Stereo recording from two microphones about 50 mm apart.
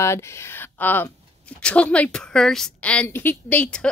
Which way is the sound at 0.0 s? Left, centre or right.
Left.